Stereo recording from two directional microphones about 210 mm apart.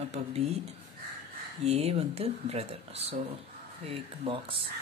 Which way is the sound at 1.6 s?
30° right (ahead or behind).